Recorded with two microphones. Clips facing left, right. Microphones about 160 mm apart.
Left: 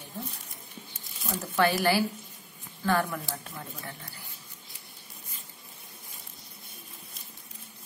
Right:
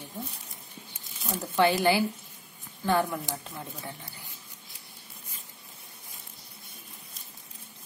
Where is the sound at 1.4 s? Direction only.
20° right (ahead or behind).